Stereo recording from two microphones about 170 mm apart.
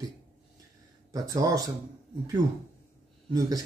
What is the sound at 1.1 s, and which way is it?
Speech, 20° right (ahead or behind).